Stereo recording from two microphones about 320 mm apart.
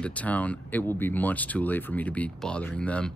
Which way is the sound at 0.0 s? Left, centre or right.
Centre.